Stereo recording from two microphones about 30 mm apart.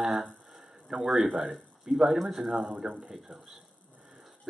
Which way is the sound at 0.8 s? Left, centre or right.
Right.